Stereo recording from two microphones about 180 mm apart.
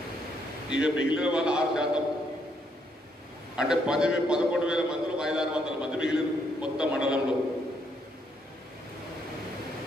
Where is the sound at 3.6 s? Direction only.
5° right (ahead or behind).